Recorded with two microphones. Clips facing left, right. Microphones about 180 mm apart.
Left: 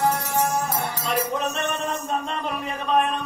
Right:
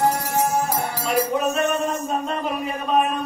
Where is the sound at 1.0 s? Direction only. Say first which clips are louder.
Right 5 dB; 5° right (ahead or behind).